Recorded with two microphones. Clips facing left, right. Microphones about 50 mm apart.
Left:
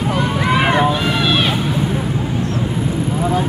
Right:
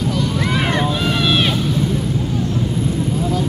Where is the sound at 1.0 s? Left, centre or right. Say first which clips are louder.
Left 1 dB; centre.